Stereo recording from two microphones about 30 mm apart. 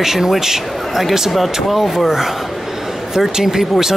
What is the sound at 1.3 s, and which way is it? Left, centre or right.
Speech, centre.